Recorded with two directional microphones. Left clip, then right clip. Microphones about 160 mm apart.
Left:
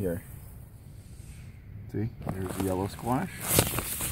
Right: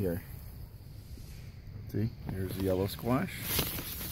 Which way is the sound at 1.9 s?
20° right (ahead or behind).